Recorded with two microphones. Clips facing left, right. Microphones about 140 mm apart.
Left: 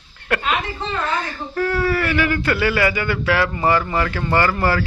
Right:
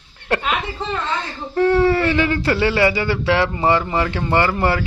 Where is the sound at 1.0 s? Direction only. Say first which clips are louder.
Left 1 dB; 25° right (ahead or behind).